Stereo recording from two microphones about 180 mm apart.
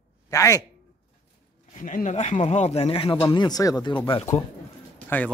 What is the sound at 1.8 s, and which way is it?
Speech, 45° left (ahead or behind).